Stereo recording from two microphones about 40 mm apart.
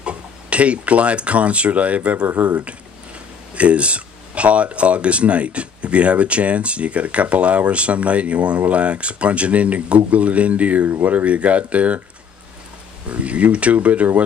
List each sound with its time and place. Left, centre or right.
0.0 s speech: right
3.5 s speech: right
13.1 s speech: right